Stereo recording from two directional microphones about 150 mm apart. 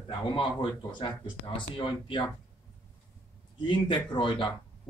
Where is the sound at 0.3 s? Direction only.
35° left (ahead or behind).